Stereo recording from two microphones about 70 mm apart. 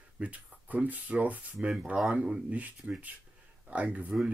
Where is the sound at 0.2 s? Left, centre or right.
Right.